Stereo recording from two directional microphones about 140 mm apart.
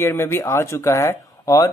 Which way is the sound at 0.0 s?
15° left (ahead or behind).